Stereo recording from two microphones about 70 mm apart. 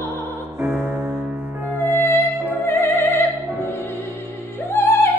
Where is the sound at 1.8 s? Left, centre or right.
Left.